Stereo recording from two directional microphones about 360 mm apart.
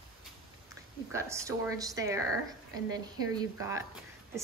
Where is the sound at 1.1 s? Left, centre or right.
Centre.